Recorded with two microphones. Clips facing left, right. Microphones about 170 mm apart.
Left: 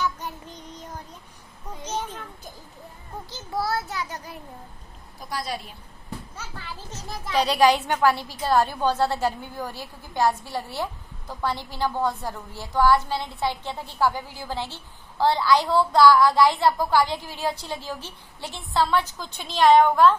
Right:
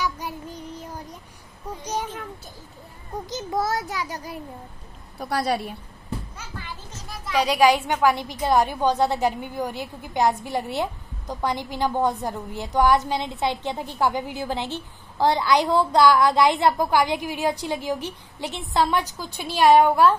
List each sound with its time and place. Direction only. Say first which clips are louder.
0.0 s child singing: right 1 dB; 10° right (ahead or behind)
1.9 s children playing: right 2 dB; 10° right (ahead or behind)
3.3 s child singing: right 2 dB; 20° right (ahead or behind)
3.9 s a woman's voice: right 2 dB; 10° right (ahead or behind)
5.2 s a woman's voice: right 7 dB; 65° right (ahead or behind)
7.3 s a woman's voice: right 1 dB; 10° right (ahead or behind)